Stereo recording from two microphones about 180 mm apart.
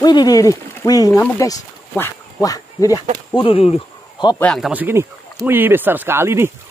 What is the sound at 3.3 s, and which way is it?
Speech, 30° left (ahead or behind).